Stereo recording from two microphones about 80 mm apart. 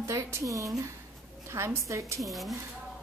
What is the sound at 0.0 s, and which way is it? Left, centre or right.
A woman's voice, right.